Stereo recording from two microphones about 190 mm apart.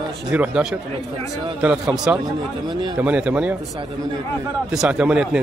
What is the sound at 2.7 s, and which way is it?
Speech, 25° right (ahead or behind).